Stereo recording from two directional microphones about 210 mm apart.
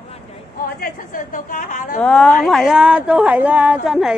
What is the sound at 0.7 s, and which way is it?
A woman's voice, 40° left (ahead or behind).